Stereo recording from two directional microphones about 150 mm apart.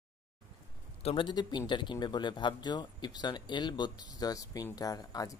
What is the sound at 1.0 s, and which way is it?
Speech, 30° left (ahead or behind).